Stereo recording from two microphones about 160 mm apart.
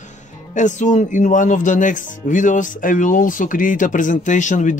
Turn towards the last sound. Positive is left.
turn(degrees=50)  # may be behind; listen again after turning